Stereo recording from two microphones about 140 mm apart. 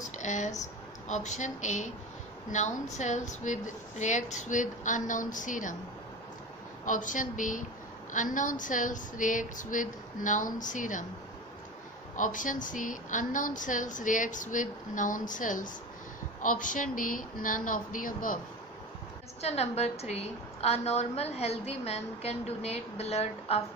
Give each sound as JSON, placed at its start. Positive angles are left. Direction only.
{"t": 0.2, "sound": "speech", "side_deg": 60}
{"t": 6.9, "sound": "a woman's voice", "side_deg": 65}
{"t": 12.2, "sound": "a woman's voice", "side_deg": 70}
{"t": 19.4, "sound": "a woman's voice", "side_deg": 50}